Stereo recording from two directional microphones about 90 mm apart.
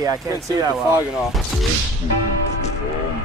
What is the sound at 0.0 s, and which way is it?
Speech, 50° right (ahead or behind).